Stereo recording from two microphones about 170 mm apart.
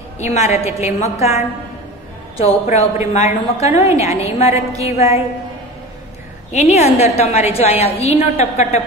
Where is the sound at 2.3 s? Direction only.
40° left (ahead or behind).